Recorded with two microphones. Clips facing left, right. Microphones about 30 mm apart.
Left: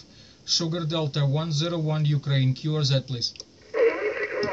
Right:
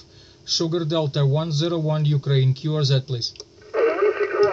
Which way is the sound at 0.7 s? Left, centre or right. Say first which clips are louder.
Right 5 dB; centre.